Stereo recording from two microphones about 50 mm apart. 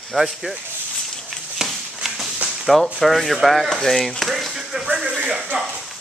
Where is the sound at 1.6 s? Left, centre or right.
Centre.